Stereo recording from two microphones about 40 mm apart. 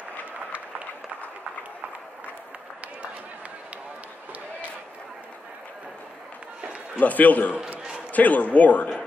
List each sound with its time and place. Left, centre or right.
7.0 s a man's voice: left